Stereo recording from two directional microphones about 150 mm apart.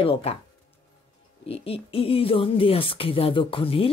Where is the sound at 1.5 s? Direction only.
40° left (ahead or behind).